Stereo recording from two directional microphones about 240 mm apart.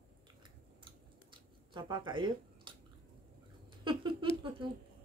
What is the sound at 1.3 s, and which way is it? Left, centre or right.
Scissors, centre.